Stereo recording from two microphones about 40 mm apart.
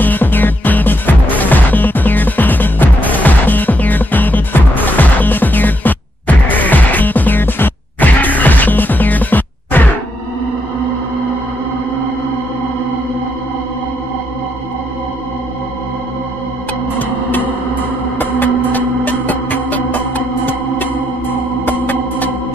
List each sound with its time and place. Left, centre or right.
0.0 s music: left
18.2 s music: left
21.6 s organ: left